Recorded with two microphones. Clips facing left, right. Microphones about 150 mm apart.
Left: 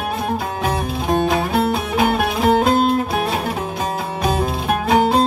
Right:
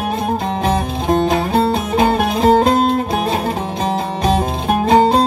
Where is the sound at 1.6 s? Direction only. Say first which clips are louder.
Right 3 dB; 35° right (ahead or behind).